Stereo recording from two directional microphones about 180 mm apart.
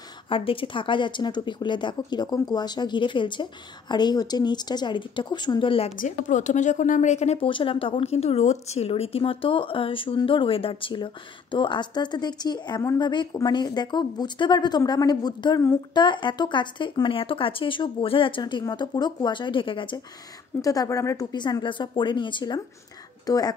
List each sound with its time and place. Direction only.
0.3 s a woman's voice: 30° left (ahead or behind)
5.9 s a woman's voice: 45° left (ahead or behind); by 23.5 s 20° left (ahead or behind)